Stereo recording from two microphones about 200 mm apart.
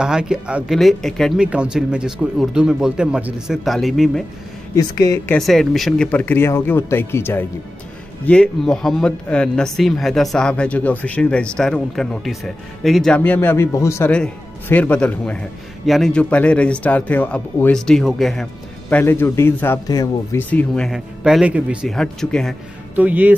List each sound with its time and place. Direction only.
0.0 s a man's voice: 5° right (ahead or behind)
4.7 s speech: 15° left (ahead or behind)
5.4 s a man's voice: centre (ahead or behind)